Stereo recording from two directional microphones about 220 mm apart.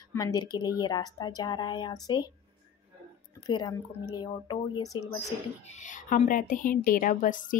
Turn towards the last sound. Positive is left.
turn(degrees=35)  # may be behind; listen again after turning